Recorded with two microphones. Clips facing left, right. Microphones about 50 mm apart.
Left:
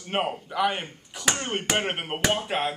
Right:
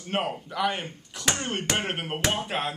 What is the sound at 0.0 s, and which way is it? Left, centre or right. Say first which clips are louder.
Speech: left 1 dB; centre.